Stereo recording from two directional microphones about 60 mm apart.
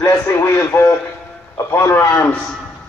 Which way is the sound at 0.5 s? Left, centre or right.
Left.